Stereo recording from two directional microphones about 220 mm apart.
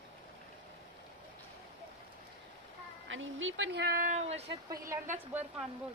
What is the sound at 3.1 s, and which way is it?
Speech, 60° right (ahead or behind).